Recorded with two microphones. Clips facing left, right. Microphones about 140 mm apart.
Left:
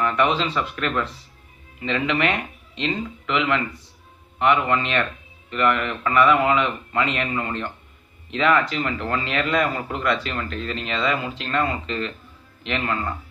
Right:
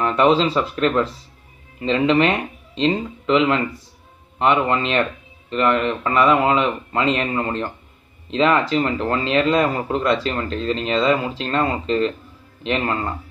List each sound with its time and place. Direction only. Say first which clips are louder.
0.0 s speech: right 5 dB; 30° right (ahead or behind)